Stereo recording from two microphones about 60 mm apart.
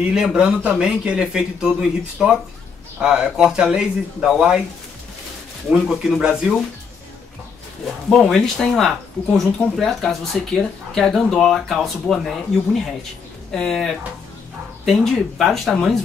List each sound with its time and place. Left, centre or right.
0.1 s speech: centre
5.8 s speech: centre
8.5 s speech: centre